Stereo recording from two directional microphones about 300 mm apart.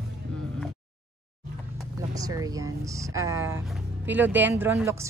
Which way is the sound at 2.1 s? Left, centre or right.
Centre.